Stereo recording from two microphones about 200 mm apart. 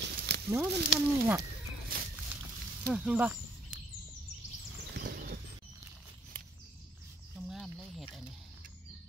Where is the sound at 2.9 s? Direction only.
5° right (ahead or behind).